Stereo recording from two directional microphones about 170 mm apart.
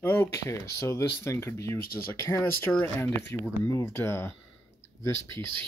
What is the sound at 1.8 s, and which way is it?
Speech, 60° left (ahead or behind).